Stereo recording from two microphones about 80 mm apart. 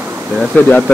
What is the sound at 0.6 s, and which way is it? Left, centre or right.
Speech, centre.